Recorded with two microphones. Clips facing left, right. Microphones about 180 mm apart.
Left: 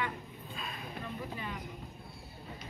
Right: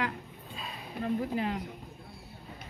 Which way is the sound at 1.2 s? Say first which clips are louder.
Right 9 dB; 75° right (ahead or behind).